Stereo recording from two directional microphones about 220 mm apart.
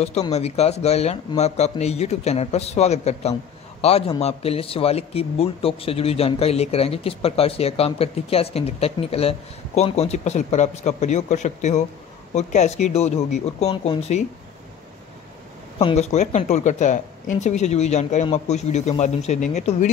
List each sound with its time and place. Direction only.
0.0 s speech: 30° left (ahead or behind)
15.8 s speech: 30° left (ahead or behind)